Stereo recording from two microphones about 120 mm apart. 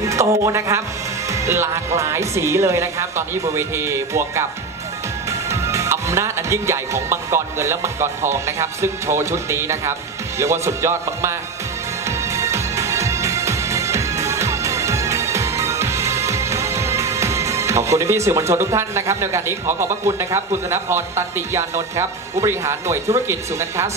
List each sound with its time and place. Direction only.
0.0 s music: 25° right (ahead or behind)
5.5 s music: 25° right (ahead or behind)